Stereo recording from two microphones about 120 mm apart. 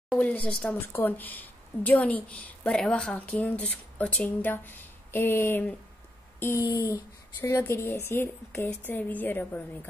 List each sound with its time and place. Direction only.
0.1 s speech: 10° left (ahead or behind)
6.4 s a sound: 25° left (ahead or behind)
7.5 s speech: 20° left (ahead or behind)